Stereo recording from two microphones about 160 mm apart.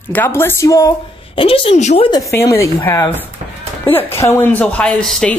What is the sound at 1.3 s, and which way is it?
Speech, 35° left (ahead or behind).